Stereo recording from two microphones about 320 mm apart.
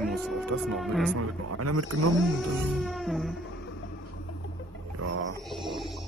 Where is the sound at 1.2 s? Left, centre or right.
Right.